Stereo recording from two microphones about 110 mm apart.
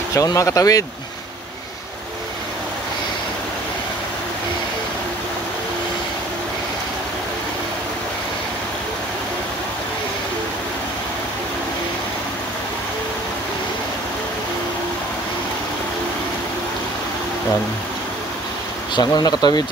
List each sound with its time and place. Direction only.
0.1 s speech: 30° left (ahead or behind)
18.9 s speech: 40° left (ahead or behind)